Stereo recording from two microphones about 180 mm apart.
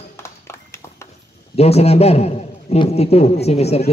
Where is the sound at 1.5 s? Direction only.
35° left (ahead or behind).